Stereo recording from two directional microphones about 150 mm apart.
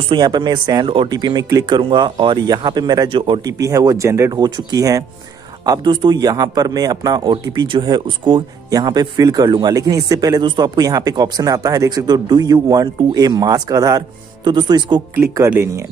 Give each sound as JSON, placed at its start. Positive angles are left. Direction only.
{"t": 0.1, "sound": "a man's voice", "side_deg": -30}